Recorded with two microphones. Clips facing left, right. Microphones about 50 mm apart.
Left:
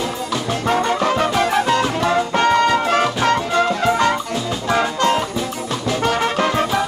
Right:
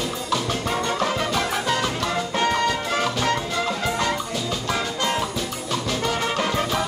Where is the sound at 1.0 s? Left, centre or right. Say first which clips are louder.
Left 6 dB; left.